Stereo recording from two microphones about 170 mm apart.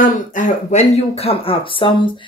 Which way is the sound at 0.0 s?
50° left (ahead or behind).